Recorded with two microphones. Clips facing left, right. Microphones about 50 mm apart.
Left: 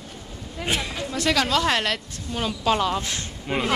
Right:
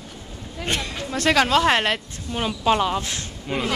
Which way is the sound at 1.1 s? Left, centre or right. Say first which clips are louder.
Right 4 dB; right.